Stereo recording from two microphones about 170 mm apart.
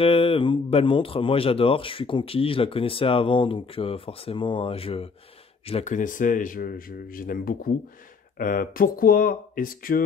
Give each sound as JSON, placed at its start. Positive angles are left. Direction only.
{"t": 0.0, "sound": "a man's voice", "side_deg": 35}